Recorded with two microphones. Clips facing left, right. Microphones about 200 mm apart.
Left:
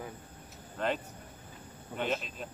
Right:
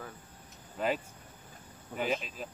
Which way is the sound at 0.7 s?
5° right (ahead or behind).